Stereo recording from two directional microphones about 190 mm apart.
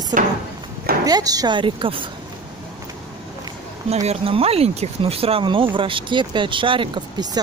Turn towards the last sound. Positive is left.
turn(degrees=-20)  # may be behind; listen again after turning